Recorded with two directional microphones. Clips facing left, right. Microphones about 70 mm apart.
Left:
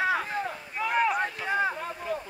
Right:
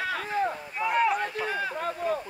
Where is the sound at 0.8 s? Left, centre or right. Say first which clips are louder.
Right 1 dB; centre.